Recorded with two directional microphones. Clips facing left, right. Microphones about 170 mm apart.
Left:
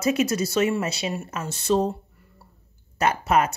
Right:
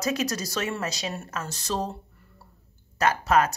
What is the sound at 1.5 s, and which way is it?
Speech, 25° left (ahead or behind).